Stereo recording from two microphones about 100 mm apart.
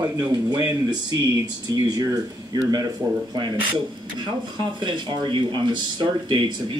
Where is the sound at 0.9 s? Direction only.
40° right (ahead or behind).